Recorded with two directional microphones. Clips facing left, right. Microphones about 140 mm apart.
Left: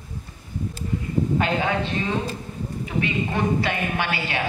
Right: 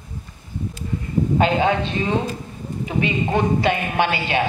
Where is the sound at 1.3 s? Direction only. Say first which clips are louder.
Right 7 dB; 25° right (ahead or behind).